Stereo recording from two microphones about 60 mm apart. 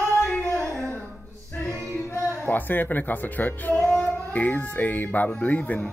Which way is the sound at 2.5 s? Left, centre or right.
Left.